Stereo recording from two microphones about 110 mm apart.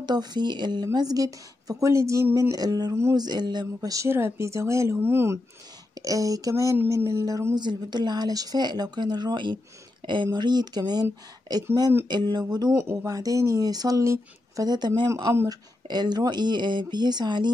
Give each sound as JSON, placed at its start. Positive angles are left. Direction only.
{"t": 0.0, "sound": "speech", "side_deg": -40}
{"t": 2.5, "sound": "speech", "side_deg": -35}